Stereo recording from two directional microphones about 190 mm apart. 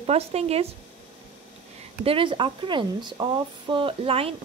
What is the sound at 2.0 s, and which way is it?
Speech, 30° right (ahead or behind).